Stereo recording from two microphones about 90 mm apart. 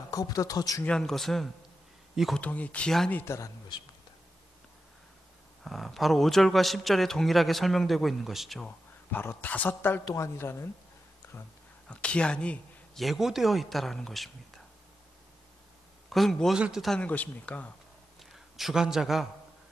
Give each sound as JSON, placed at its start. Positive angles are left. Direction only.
{"t": 0.1, "sound": "speech", "side_deg": 40}
{"t": 0.8, "sound": "a man's voice", "side_deg": 5}
{"t": 2.3, "sound": "speech", "side_deg": 15}
{"t": 5.6, "sound": "a man's voice", "side_deg": 0}
{"t": 9.1, "sound": "speech", "side_deg": 25}
{"t": 11.9, "sound": "speech", "side_deg": 15}
{"t": 13.0, "sound": "a man's voice", "side_deg": -5}
{"t": 16.1, "sound": "a man's voice", "side_deg": 5}
{"t": 16.5, "sound": "speech", "side_deg": -10}
{"t": 17.0, "sound": "speech", "side_deg": 15}
{"t": 18.2, "sound": "a man's voice", "side_deg": -5}